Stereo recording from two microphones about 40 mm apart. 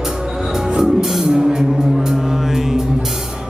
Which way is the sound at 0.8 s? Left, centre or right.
Centre.